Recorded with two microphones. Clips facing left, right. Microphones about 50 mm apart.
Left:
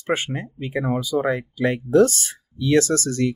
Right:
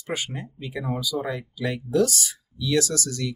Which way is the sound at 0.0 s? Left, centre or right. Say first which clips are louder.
Left 7 dB; left.